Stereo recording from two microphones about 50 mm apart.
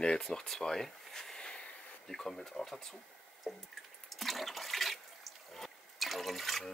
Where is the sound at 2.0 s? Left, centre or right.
Centre.